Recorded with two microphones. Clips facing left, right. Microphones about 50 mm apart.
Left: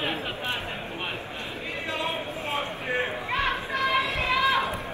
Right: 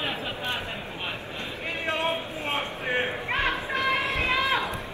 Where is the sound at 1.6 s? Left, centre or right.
Right.